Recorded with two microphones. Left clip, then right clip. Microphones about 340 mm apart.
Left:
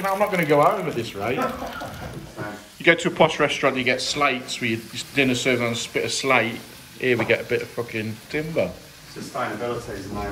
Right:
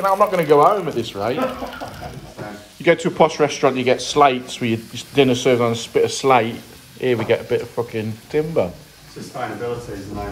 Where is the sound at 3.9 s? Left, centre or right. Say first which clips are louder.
Right 4 dB; right.